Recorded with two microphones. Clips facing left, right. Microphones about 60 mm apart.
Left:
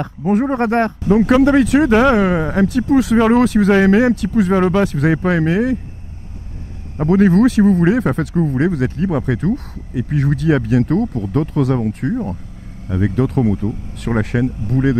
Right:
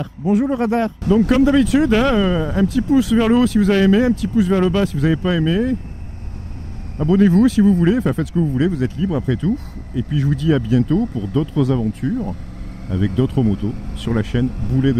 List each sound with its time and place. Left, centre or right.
0.0 s speech: left
4.6 s speech: left
7.0 s speech: left